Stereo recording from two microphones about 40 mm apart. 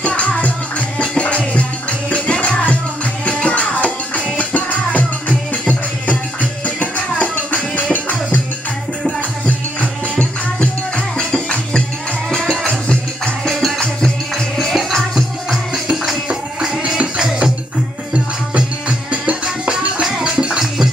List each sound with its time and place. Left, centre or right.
0.0 s music: left
6.8 s music: left
9.8 s music: left
13.5 s music: centre
14.9 s music: centre
15.7 s music: centre
19.2 s music: right
19.7 s music: centre